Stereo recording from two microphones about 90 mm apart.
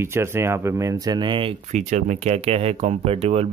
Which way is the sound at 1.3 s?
75° right (ahead or behind).